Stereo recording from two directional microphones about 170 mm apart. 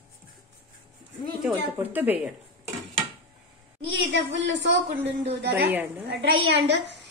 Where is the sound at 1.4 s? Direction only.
10° right (ahead or behind).